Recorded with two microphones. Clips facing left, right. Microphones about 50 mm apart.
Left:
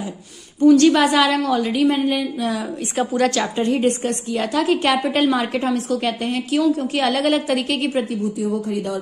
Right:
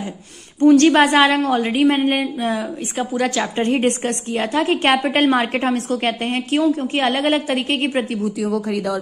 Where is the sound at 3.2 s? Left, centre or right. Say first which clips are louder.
Left 1 dB; centre.